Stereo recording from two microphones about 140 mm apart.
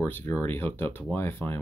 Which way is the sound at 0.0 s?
15° left (ahead or behind).